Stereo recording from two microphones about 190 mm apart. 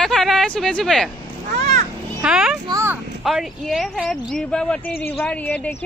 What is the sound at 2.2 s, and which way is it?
Speech, 5° right (ahead or behind).